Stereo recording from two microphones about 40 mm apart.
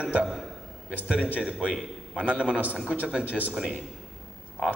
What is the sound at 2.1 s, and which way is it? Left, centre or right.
Speech, right.